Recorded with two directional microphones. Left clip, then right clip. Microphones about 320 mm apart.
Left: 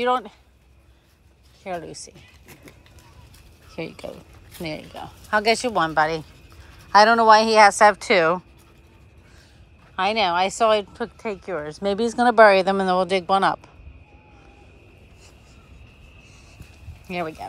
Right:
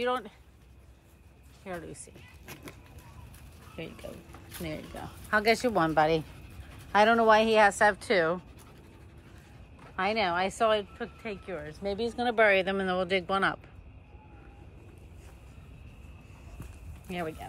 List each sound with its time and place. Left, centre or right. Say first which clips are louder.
0.0 s speech: left 9 dB; centre
1.6 s a woman's voice: left 9 dB; centre
3.7 s speech: left 9 dB; centre
9.9 s speech: left 8 dB; centre
12.0 s speech: left 11 dB; left
12.4 s speech: left 9 dB; centre
17.1 s speech: left 8 dB; centre